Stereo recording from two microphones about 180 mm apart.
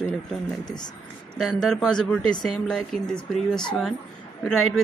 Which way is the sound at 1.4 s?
5° left (ahead or behind).